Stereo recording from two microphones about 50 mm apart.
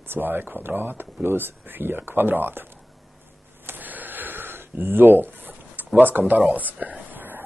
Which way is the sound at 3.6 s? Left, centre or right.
Right.